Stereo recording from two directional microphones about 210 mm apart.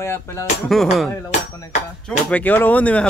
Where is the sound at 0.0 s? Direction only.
10° left (ahead or behind).